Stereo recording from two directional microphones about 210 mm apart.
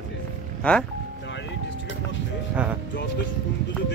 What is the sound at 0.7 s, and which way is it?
Speech, 5° left (ahead or behind).